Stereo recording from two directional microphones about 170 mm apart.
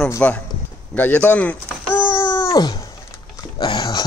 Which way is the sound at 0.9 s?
10° left (ahead or behind).